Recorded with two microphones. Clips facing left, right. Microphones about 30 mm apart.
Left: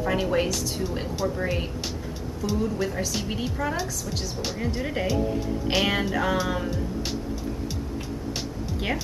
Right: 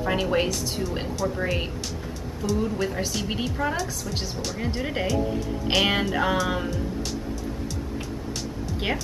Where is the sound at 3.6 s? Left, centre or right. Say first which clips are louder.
Right 2 dB; centre.